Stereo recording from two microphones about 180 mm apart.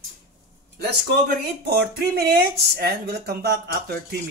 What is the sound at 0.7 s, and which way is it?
Speech, 65° right (ahead or behind).